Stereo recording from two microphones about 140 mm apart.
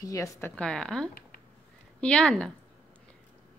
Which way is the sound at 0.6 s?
5° left (ahead or behind).